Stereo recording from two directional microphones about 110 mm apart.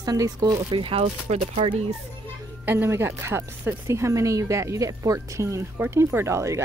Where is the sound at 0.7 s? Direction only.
55° right (ahead or behind); by 1.7 s 75° right (ahead or behind).